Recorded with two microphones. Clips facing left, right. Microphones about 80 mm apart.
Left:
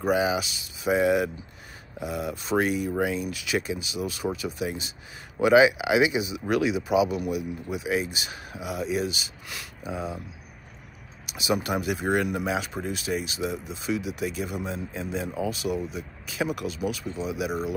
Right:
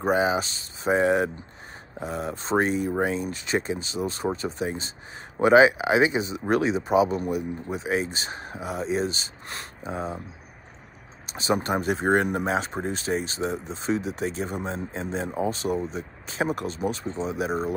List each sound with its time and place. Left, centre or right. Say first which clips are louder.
0.0 s speech: right 1 dB; right
11.2 s speech: right 2 dB; right